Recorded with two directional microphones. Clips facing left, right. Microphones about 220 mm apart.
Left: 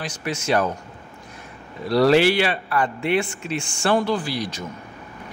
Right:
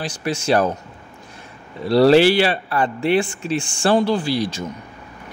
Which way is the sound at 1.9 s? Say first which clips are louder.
Right 4 dB; 30° right (ahead or behind).